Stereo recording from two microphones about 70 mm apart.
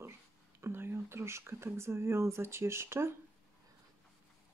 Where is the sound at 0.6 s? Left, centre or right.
Right.